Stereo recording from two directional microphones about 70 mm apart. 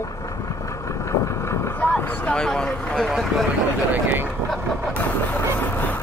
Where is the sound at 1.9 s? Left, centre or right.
Centre.